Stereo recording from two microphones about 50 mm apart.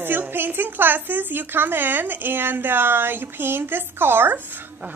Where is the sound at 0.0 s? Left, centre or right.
Right.